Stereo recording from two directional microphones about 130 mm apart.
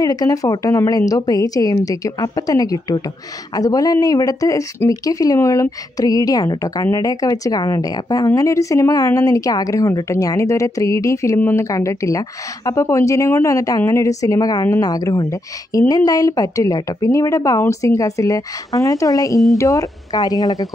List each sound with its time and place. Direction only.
0.0 s a woman's voice: 30° left (ahead or behind)